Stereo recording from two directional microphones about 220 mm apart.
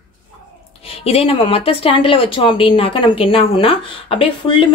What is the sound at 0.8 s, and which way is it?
A woman's voice, 25° left (ahead or behind).